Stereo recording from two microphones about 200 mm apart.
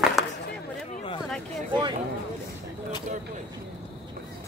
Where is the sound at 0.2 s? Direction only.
Centre (ahead or behind).